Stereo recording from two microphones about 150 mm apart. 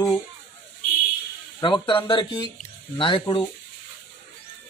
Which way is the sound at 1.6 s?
30° left (ahead or behind).